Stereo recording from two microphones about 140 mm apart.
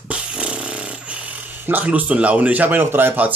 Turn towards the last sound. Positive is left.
turn(degrees=-15)  # may be behind; listen again after turning